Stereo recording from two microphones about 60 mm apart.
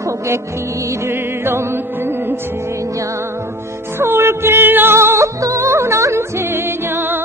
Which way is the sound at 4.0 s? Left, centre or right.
Right.